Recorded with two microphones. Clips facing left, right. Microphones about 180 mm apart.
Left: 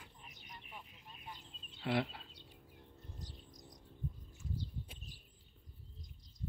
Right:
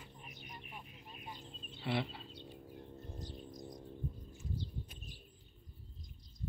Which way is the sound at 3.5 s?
30° right (ahead or behind).